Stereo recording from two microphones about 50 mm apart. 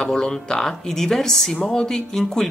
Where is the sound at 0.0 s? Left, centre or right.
Centre.